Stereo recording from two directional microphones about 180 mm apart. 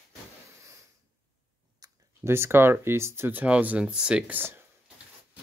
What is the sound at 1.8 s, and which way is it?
Speech, 15° right (ahead or behind).